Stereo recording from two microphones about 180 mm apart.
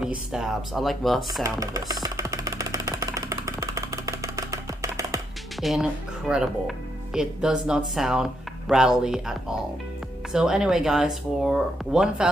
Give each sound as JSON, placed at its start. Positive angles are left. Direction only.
{"t": 0.0, "sound": "speech", "side_deg": -5}
{"t": 1.4, "sound": "music", "side_deg": -20}
{"t": 5.6, "sound": "speech", "side_deg": 0}
{"t": 10.3, "sound": "speech", "side_deg": -5}